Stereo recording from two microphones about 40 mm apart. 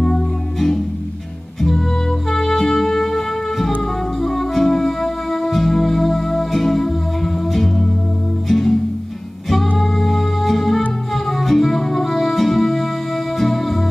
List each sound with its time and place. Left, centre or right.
0.0 s music: centre
2.2 s music: centre
9.8 s music: centre